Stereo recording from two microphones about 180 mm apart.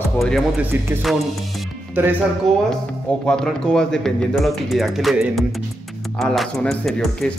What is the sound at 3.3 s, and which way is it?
Speech, 5° left (ahead or behind).